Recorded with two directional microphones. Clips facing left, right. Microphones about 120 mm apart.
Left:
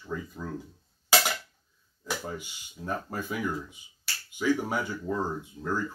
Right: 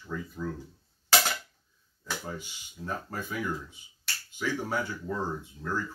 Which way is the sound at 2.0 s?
15° left (ahead or behind).